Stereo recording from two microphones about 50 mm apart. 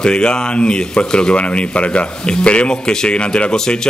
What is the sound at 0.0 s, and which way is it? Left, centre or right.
Speech, centre.